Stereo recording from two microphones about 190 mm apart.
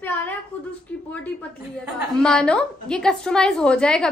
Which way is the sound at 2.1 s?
5° left (ahead or behind).